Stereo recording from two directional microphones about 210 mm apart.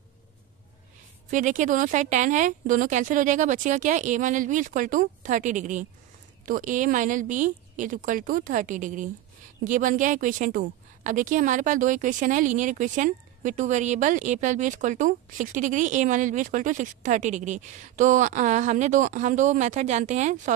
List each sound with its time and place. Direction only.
1.3 s speech: 40° right (ahead or behind)